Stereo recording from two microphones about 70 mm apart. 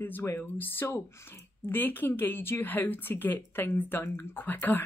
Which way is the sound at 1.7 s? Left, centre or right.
Left.